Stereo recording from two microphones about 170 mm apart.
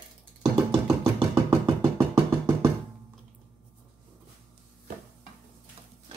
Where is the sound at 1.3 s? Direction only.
20° right (ahead or behind).